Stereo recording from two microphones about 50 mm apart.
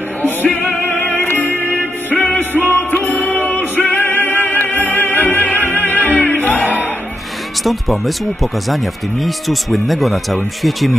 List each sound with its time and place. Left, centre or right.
0.8 s music: left
1.2 s music: left
2.0 s music: left
7.6 s speech: centre